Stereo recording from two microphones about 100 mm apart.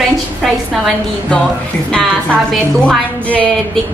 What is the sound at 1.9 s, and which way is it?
A woman's voice, 10° left (ahead or behind).